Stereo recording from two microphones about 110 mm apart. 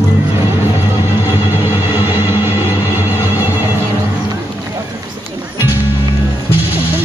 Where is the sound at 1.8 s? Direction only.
20° right (ahead or behind).